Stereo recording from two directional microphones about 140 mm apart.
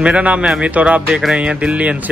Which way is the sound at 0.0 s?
10° right (ahead or behind).